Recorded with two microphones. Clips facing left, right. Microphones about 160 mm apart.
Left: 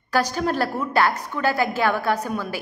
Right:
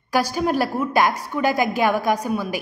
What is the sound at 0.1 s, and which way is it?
A woman's voice, 10° right (ahead or behind).